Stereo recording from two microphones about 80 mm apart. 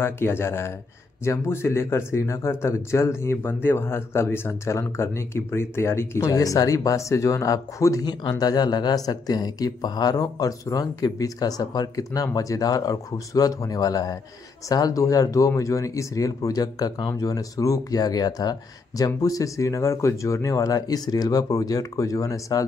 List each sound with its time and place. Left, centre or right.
0.0 s speech: left
8.0 s speech: left